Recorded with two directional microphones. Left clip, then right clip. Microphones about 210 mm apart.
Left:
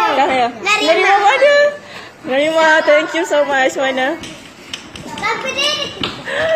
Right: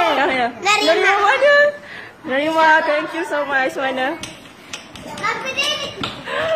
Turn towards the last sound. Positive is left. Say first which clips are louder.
# left 4 dB
turn(degrees=0)  # may be behind; listen again after turning